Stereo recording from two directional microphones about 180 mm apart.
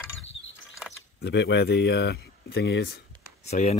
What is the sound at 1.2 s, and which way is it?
Speech, 75° left (ahead or behind).